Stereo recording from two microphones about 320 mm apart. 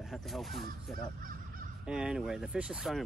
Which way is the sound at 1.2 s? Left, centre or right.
Right.